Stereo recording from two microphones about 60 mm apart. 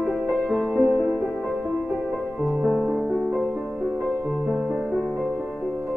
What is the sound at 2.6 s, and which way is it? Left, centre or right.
Music, centre.